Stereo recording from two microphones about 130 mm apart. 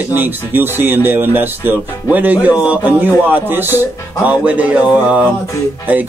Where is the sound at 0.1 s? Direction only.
15° right (ahead or behind).